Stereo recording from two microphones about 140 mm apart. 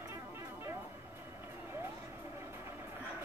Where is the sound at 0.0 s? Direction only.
20° right (ahead or behind).